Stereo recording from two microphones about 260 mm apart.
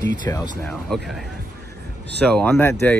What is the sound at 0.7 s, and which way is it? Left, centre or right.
Speech, centre.